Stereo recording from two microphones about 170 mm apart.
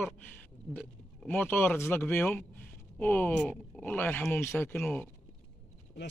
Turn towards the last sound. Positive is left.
turn(degrees=10)  # may be behind; listen again after turning